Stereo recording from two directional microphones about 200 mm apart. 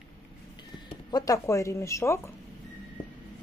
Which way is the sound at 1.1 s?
20° left (ahead or behind).